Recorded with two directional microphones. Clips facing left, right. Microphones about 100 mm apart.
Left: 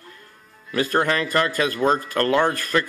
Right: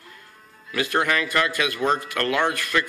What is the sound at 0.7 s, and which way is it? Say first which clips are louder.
Speech: left 2 dB; 40° left (ahead or behind).